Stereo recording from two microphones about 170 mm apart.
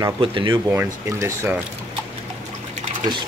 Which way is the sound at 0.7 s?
15° right (ahead or behind).